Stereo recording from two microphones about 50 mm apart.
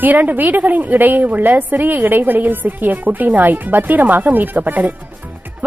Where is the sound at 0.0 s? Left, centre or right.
Right.